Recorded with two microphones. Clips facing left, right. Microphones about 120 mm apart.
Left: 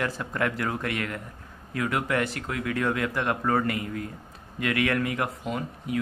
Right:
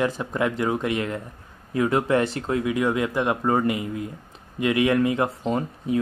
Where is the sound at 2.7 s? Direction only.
15° right (ahead or behind).